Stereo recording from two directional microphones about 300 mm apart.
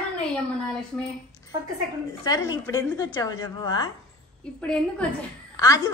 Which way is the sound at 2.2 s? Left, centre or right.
Centre.